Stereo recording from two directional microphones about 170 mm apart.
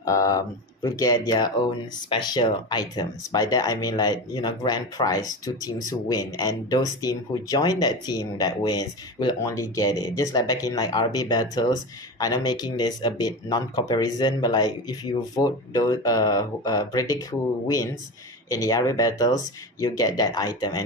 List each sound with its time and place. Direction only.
0.0 s speech: 20° left (ahead or behind)